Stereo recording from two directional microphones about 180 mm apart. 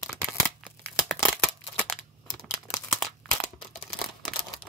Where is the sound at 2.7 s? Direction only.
Centre (ahead or behind).